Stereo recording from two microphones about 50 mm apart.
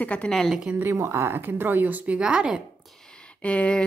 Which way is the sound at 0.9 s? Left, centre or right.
Right.